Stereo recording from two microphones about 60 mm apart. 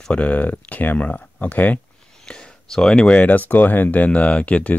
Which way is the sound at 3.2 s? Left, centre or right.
Left.